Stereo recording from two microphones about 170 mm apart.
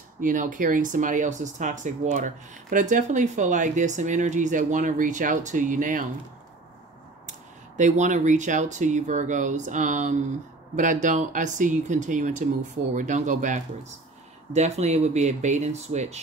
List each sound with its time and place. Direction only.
0.2 s speech: 50° right (ahead or behind)
7.2 s speech: 45° right (ahead or behind)